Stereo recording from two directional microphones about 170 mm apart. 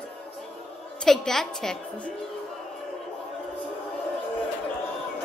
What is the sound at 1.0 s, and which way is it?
A woman's voice, 5° left (ahead or behind).